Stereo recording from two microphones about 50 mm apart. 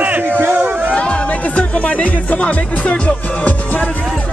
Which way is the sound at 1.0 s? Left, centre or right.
Left.